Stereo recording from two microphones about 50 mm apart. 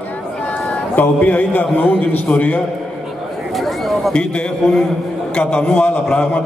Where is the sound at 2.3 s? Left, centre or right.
Left.